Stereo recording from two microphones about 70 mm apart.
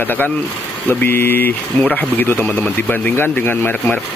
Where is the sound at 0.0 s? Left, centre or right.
Left.